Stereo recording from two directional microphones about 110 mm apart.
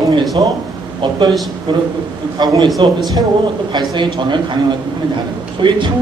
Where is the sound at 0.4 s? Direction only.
40° right (ahead or behind).